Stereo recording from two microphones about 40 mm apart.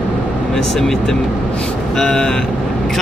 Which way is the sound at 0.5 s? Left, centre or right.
Centre.